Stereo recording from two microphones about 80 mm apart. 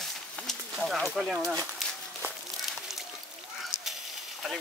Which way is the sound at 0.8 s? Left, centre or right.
Centre.